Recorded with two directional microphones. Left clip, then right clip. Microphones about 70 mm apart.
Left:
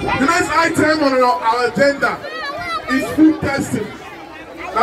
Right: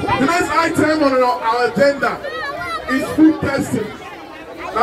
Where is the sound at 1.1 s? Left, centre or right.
Left.